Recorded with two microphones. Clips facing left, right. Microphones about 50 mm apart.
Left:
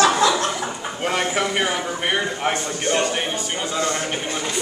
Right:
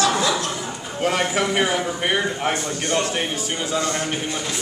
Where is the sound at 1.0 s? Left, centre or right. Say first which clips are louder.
Right 2 dB; centre.